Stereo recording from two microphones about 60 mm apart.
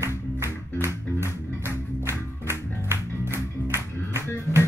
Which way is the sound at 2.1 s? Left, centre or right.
Right.